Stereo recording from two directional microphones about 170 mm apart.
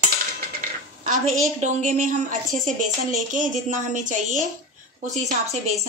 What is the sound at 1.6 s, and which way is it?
A woman's voice, 45° right (ahead or behind).